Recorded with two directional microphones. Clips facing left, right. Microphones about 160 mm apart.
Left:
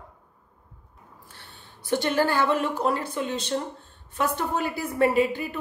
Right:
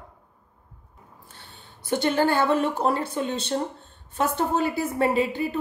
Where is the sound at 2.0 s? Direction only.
25° right (ahead or behind).